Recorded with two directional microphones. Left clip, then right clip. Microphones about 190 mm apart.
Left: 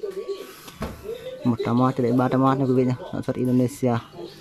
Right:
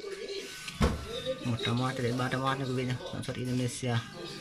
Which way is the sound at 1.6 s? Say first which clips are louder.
Left 10 dB; 20° left (ahead or behind).